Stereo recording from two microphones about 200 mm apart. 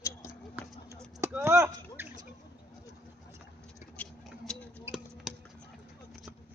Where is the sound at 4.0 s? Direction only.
5° left (ahead or behind).